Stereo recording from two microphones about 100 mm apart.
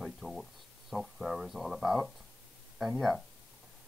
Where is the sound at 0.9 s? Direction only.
Centre (ahead or behind).